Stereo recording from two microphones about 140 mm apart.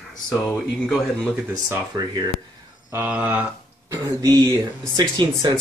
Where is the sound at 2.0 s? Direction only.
25° right (ahead or behind).